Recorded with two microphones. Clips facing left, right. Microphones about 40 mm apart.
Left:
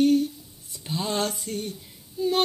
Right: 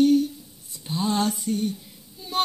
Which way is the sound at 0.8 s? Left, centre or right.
Left.